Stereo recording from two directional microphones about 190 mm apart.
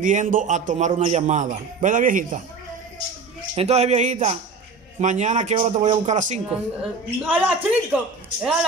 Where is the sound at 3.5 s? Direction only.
35° right (ahead or behind).